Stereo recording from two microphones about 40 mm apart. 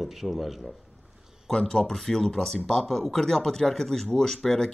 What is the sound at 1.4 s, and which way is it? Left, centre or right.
Speech, centre.